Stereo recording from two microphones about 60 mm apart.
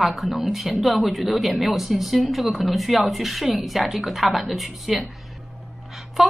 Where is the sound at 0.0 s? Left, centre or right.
Centre.